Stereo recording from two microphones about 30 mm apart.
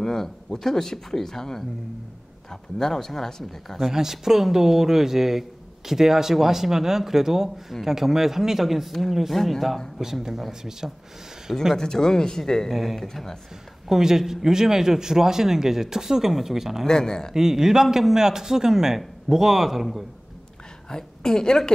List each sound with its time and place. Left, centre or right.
0.0 s speech: centre
3.9 s a man's voice: centre
9.3 s speech: centre
10.0 s a man's voice: centre
11.7 s speech: centre
12.7 s speech: centre
13.8 s a man's voice: centre
16.8 s speech: left
17.4 s a man's voice: centre
20.9 s a woman's voice: left